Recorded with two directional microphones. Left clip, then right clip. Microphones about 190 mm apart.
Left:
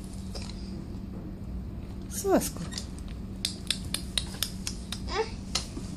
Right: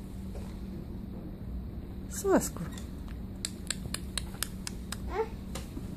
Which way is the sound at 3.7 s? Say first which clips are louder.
Left 6 dB; 10° right (ahead or behind).